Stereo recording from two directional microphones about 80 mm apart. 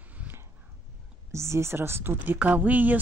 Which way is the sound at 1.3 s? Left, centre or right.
Right.